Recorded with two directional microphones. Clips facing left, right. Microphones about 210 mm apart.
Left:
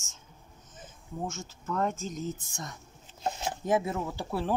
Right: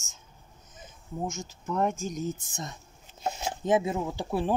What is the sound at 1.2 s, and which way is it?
Speech, 15° right (ahead or behind).